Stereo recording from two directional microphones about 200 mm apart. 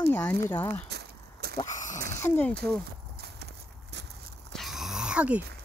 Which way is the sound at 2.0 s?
15° left (ahead or behind).